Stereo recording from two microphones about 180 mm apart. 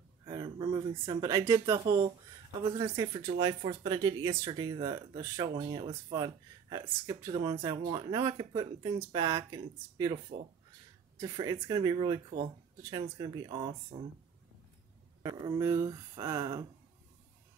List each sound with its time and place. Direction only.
0.2 s speech: 25° right (ahead or behind)
11.1 s speech: 20° right (ahead or behind)
15.2 s speech: 20° right (ahead or behind)